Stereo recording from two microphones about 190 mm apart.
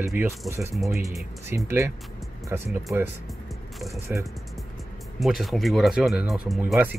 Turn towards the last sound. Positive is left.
turn(degrees=0)  # may be behind; listen again after turning